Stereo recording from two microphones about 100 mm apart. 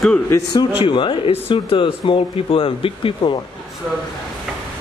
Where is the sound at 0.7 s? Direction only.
60° left (ahead or behind).